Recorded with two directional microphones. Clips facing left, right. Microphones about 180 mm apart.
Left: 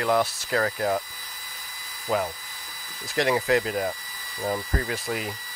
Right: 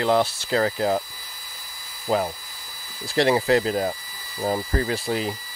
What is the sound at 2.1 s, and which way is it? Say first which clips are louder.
Speech: right 3 dB; 30° right (ahead or behind).